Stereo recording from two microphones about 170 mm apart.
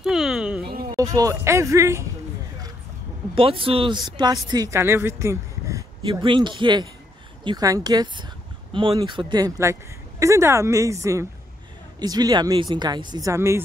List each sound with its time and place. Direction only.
0.0 s a sound: centre (ahead or behind)
0.9 s speech: 20° right (ahead or behind)
3.3 s speech: 30° right (ahead or behind)
6.0 s speech: 30° right (ahead or behind)